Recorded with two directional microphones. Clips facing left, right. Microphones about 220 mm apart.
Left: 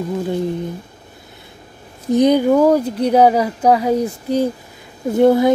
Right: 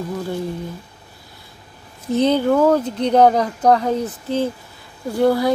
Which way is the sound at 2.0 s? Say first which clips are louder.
Left 4 dB; 15° left (ahead or behind).